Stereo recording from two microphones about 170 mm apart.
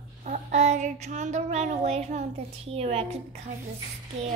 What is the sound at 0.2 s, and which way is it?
Child singing, 45° right (ahead or behind).